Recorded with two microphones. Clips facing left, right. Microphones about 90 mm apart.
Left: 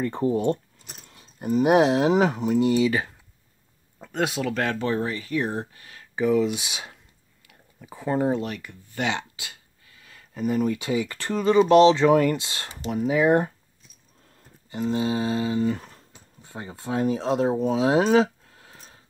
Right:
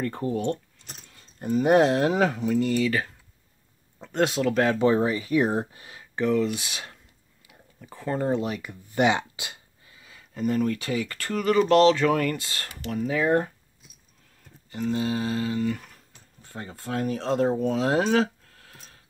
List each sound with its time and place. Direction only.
0.0 s speech: 25° left (ahead or behind)
0.7 s keys jangling: 5° left (ahead or behind)
1.2 s speech: 10° left (ahead or behind)
4.0 s speech: centre (ahead or behind)
4.7 s speech: 15° right (ahead or behind)
6.1 s speech: 10° left (ahead or behind)
8.3 s speech: 5° right (ahead or behind)
10.0 s a sound: 5° right (ahead or behind)
10.4 s speech: 10° left (ahead or behind)
14.7 s speech: 25° left (ahead or behind)
18.1 s a sound: 20° left (ahead or behind)